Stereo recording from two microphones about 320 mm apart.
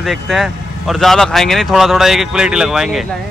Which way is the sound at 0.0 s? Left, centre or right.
Centre.